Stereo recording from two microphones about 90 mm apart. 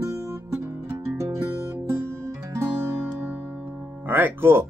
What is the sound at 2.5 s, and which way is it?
Music, 25° right (ahead or behind).